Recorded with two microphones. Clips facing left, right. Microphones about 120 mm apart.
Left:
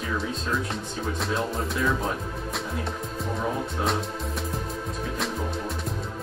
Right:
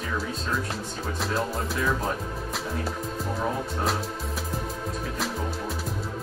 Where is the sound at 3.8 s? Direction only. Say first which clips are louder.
Left 1 dB; centre (ahead or behind).